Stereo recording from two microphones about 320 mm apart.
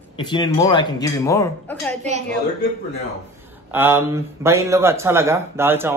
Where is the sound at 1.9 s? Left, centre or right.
Right.